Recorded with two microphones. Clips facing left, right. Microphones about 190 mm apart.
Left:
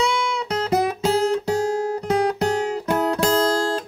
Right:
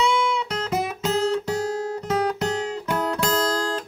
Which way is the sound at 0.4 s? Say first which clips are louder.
Left 4 dB; 35° left (ahead or behind).